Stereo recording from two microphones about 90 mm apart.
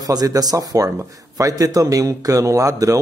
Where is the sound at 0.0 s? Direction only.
45° right (ahead or behind).